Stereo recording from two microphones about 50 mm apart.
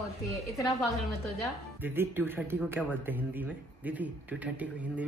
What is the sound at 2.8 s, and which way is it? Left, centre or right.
Speech, right.